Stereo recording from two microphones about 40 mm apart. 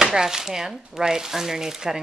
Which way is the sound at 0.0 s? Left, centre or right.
Centre.